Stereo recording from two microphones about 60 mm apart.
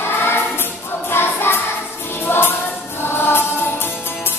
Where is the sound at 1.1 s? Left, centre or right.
Left.